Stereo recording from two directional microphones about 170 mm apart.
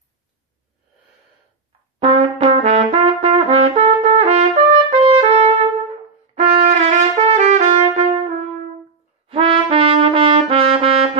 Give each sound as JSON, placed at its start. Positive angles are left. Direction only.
{"t": 2.0, "sound": "trumpet", "side_deg": -35}
{"t": 9.3, "sound": "brass instrument", "side_deg": -35}